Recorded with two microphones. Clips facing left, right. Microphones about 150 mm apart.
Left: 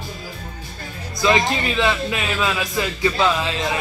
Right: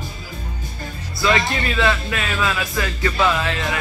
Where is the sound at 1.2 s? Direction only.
20° left (ahead or behind).